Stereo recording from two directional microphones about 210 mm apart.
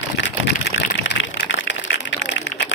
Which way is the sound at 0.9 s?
55° left (ahead or behind).